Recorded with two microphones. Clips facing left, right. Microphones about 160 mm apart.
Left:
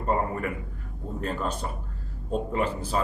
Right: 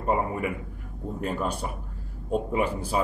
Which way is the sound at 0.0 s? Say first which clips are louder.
Right 1 dB; 10° right (ahead or behind).